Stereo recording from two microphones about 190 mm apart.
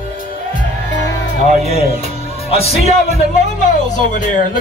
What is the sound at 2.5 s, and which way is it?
Speech, 35° left (ahead or behind).